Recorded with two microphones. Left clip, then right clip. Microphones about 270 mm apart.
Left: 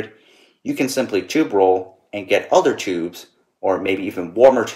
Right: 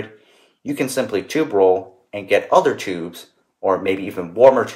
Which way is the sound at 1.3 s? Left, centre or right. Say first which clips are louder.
Even; centre.